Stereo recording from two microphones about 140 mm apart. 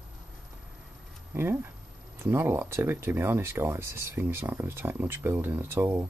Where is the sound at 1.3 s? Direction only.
15° right (ahead or behind).